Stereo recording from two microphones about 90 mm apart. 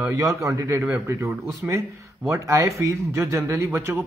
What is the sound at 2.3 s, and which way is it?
Speech, 35° right (ahead or behind).